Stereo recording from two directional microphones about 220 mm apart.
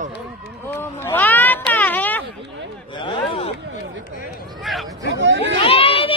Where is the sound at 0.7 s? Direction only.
10° left (ahead or behind).